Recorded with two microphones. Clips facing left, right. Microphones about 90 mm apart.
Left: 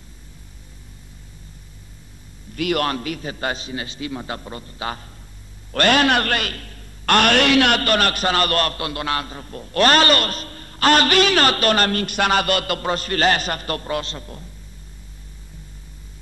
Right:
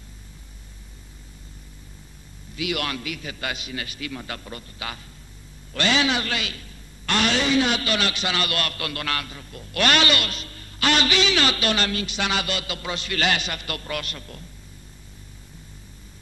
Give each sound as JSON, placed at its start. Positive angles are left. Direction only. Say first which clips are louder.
{"t": 2.5, "sound": "a man's voice", "louder": "left 6 dB", "side_deg": 50}
{"t": 5.7, "sound": "a man's voice", "louder": "left 6 dB", "side_deg": 55}